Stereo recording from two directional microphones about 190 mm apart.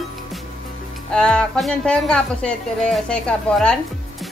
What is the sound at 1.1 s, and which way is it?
Speech, 5° left (ahead or behind).